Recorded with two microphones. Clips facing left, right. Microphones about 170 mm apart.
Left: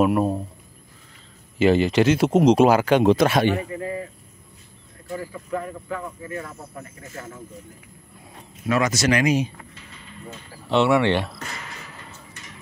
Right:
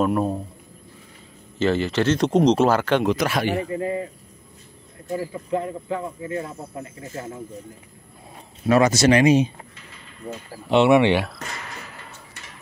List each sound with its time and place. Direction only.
0.0 s speech: 5° left (ahead or behind)
1.6 s speech: 15° left (ahead or behind)
3.0 s a man's voice: 25° left (ahead or behind)
3.5 s speech: 25° right (ahead or behind)
8.6 s speech: 30° right (ahead or behind)
10.7 s speech: 20° right (ahead or behind)